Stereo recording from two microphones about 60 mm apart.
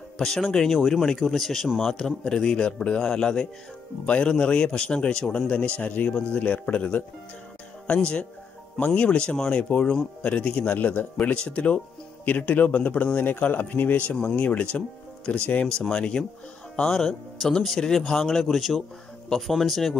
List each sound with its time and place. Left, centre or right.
0.2 s a man's voice: centre